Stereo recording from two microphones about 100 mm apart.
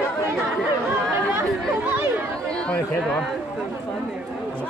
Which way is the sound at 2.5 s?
10° left (ahead or behind).